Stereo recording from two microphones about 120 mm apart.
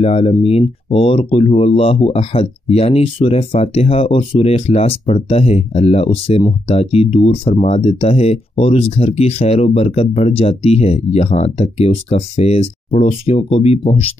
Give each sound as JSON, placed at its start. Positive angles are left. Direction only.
{"t": 0.0, "sound": "speech", "side_deg": 55}